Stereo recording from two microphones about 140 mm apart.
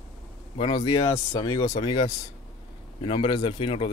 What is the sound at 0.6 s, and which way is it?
Speech, 35° left (ahead or behind).